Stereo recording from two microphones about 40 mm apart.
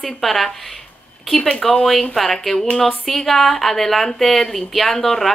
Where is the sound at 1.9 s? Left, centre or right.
Centre.